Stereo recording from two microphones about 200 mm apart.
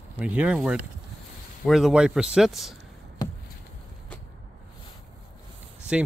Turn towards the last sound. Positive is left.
turn(degrees=-5)  # may be behind; listen again after turning